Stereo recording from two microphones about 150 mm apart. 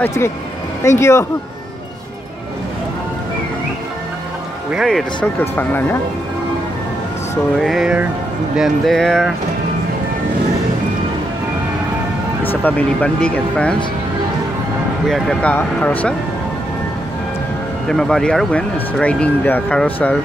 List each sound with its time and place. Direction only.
0.0 s speech: 15° left (ahead or behind)
4.6 s speech: centre (ahead or behind)
5.4 s speech: 10° left (ahead or behind)
7.6 s speech: centre (ahead or behind)
12.4 s speech: 10° left (ahead or behind)
15.0 s speech: centre (ahead or behind)
17.8 s speech: 5° left (ahead or behind)